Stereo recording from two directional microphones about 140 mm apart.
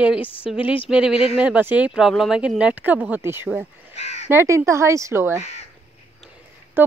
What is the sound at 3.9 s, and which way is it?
Crow, 50° left (ahead or behind).